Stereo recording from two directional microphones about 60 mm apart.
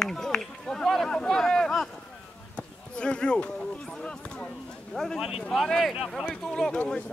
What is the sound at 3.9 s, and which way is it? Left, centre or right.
Speech, centre.